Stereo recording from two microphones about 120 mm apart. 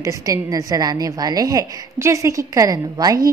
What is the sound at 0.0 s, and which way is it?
A woman's voice, 25° right (ahead or behind).